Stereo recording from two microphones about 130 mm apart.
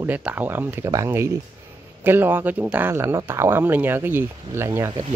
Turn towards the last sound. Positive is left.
turn(degrees=-20)  # may be behind; listen again after turning